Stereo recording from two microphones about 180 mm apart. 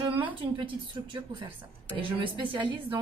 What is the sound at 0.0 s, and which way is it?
Speech, 25° right (ahead or behind).